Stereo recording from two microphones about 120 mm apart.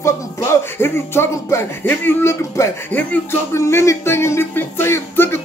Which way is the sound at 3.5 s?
25° left (ahead or behind).